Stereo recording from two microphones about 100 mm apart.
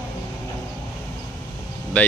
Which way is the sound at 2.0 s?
15° left (ahead or behind).